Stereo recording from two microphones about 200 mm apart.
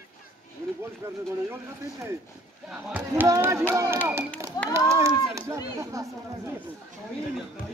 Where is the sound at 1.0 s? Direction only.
10° right (ahead or behind).